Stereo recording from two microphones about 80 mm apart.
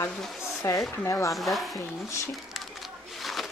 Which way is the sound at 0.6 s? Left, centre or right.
Left.